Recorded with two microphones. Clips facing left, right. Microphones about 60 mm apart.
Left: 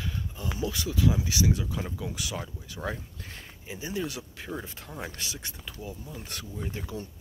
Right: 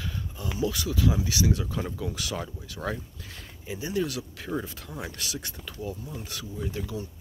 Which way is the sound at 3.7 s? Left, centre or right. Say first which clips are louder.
Right 4 dB; left.